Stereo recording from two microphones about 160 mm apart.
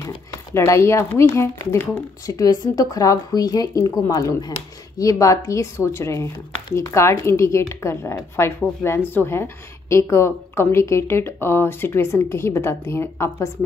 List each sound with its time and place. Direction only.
0.0 s speech: 20° left (ahead or behind)